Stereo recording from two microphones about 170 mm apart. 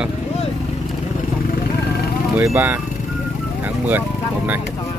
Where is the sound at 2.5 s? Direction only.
15° right (ahead or behind).